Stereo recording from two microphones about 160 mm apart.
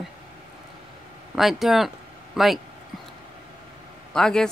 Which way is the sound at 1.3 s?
Centre (ahead or behind).